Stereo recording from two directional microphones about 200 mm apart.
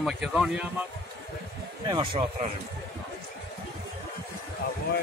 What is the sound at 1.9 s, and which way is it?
Speech, 25° right (ahead or behind).